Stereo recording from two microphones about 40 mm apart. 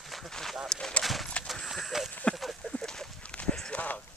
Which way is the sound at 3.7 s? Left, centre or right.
Left.